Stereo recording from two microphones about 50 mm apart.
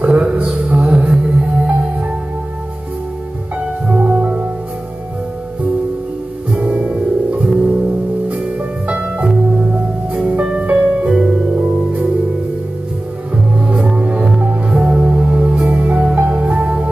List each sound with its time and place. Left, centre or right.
0.0 s music: right
3.5 s music: right
6.5 s music: right
11.1 s music: centre
13.7 s music: right